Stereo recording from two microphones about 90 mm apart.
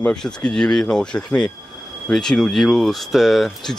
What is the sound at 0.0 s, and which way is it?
Speech, 10° left (ahead or behind).